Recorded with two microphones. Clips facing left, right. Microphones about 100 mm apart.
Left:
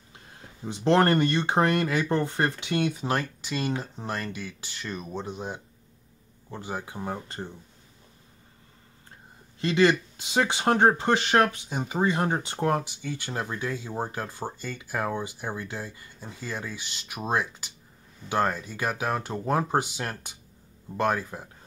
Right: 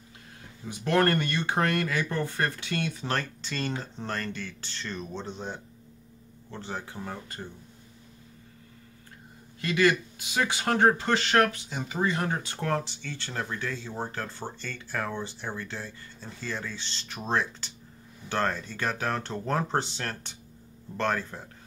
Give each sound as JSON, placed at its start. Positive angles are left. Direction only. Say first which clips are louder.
{"t": 0.7, "sound": "speech", "louder": "left 3 dB", "side_deg": 25}
{"t": 7.0, "sound": "speech", "louder": "left 4 dB", "side_deg": 25}
{"t": 9.6, "sound": "speech", "louder": "left 3 dB", "side_deg": 20}